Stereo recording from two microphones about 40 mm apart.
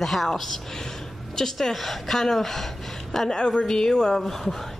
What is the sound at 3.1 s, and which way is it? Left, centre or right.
A woman's voice, centre.